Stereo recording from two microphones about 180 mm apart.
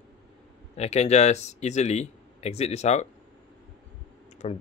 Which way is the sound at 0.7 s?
35° left (ahead or behind).